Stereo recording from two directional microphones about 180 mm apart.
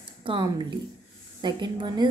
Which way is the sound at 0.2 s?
25° right (ahead or behind).